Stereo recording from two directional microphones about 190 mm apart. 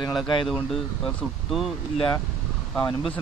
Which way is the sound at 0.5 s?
Centre (ahead or behind).